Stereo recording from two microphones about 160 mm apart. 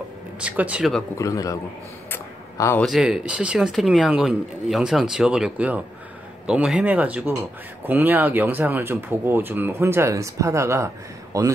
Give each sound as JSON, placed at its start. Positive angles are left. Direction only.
{"t": 0.4, "sound": "speech", "side_deg": -10}
{"t": 1.1, "sound": "a man's voice", "side_deg": 20}
{"t": 2.0, "sound": "a sound", "side_deg": 15}
{"t": 2.8, "sound": "speech", "side_deg": -5}